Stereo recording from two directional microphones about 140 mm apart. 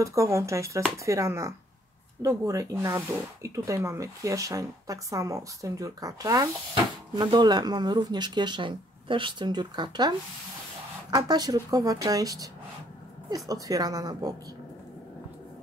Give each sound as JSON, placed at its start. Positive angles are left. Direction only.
{"t": 0.0, "sound": "speech", "side_deg": -20}